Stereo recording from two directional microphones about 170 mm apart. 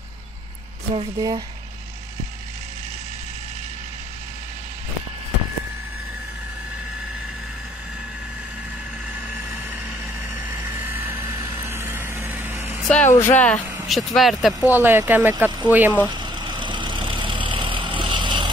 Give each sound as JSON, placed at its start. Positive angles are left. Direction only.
{"t": 0.9, "sound": "speech", "side_deg": -30}
{"t": 9.1, "sound": "vehicle", "side_deg": -15}
{"t": 12.8, "sound": "a sound", "side_deg": 5}
{"t": 13.3, "sound": "speech", "side_deg": 10}
{"t": 16.1, "sound": "vehicle", "side_deg": -25}